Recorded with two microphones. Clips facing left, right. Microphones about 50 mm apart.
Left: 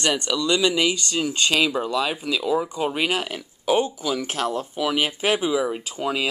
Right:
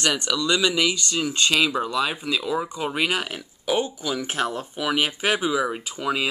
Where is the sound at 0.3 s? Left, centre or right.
Centre.